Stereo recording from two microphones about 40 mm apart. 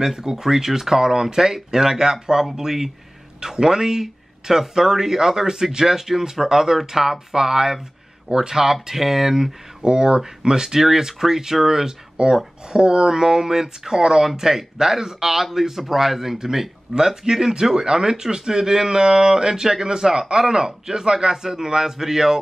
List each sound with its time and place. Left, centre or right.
0.0 s speech: centre